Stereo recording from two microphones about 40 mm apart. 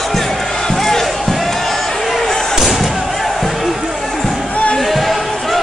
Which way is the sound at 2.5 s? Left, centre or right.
Centre.